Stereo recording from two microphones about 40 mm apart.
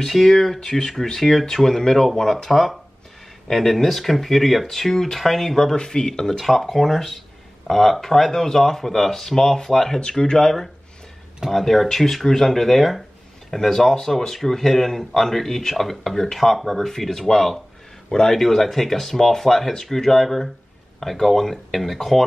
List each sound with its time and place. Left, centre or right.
0.0 s speech: centre
5.8 s speech: centre
11.5 s speech: centre
18.1 s speech: centre